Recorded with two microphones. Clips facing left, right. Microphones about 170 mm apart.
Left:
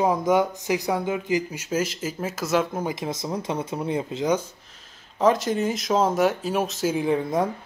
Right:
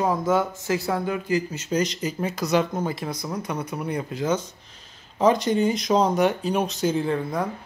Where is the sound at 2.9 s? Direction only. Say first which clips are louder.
Left 1 dB; 20° left (ahead or behind).